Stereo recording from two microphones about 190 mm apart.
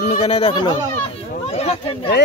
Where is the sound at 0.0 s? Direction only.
35° left (ahead or behind).